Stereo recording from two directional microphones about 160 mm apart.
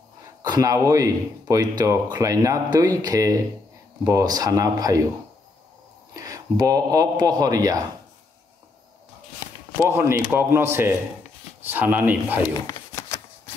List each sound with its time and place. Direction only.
0.4 s speech: 20° right (ahead or behind)
6.1 s speech: 20° right (ahead or behind)
9.8 s speech: 15° right (ahead or behind)
12.6 s shuffling cards: 20° left (ahead or behind)